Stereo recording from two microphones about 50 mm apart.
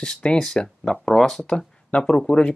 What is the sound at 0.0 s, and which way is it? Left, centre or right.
Speech, centre.